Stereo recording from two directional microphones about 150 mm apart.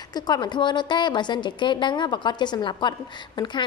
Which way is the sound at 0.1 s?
25° left (ahead or behind).